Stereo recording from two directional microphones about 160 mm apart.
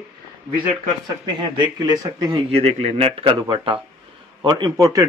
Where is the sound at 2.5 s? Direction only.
35° right (ahead or behind).